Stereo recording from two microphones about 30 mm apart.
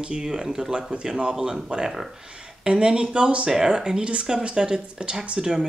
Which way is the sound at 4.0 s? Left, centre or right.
Right.